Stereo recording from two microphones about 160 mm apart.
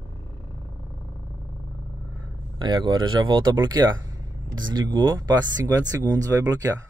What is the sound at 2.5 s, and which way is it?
Speech, 30° right (ahead or behind).